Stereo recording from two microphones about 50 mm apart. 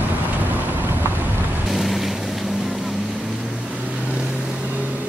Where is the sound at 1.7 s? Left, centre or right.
Centre.